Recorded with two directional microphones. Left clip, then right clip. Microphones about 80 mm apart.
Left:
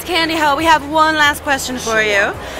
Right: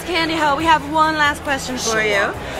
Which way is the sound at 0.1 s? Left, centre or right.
Left.